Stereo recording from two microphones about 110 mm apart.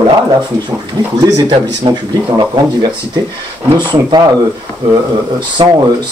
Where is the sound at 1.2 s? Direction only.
35° right (ahead or behind).